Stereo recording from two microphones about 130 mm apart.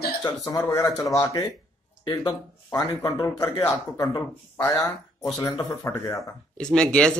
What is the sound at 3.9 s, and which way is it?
A man's voice, 25° left (ahead or behind).